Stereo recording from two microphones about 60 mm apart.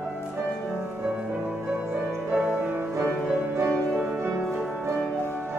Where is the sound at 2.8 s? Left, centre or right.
Right.